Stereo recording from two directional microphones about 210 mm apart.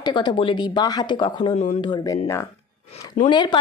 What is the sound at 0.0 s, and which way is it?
A woman's voice, 20° left (ahead or behind).